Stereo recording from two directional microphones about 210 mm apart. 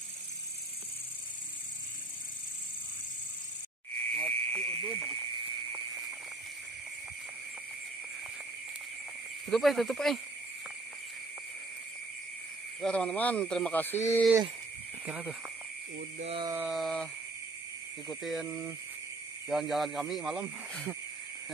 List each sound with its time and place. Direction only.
4.1 s frog: 5° left (ahead or behind)
9.5 s speech: centre (ahead or behind)
12.8 s speech: 5° left (ahead or behind)
15.0 s speech: 5° right (ahead or behind)
16.2 s a sound: 30° right (ahead or behind)
16.4 s speech: 5° right (ahead or behind)